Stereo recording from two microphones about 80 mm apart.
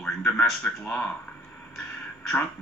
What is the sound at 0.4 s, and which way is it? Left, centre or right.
Speech, centre.